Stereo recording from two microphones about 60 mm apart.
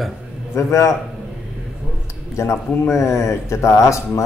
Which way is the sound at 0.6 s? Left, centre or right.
Left.